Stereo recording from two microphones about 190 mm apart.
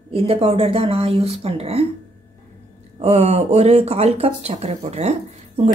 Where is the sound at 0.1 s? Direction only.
30° right (ahead or behind).